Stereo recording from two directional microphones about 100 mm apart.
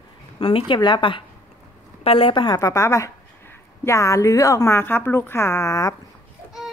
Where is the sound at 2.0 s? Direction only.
65° left (ahead or behind).